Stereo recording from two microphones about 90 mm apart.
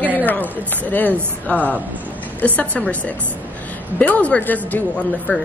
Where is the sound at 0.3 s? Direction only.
20° left (ahead or behind).